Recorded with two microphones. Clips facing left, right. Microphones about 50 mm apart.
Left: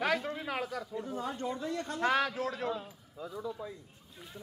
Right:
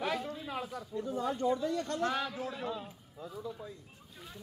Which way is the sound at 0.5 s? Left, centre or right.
Left.